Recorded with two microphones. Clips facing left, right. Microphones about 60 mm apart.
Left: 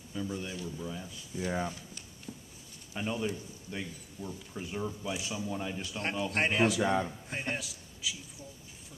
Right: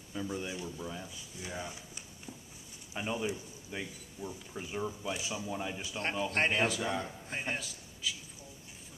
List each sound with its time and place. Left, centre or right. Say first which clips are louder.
0.1 s speech: even; centre
1.4 s speech: left 8 dB; left
1.7 s a sound: left 3 dB; centre
2.9 s a man's voice: left 1 dB; centre
6.8 s a man's voice: left 6 dB; centre
7.2 s a man's voice: left 1 dB; centre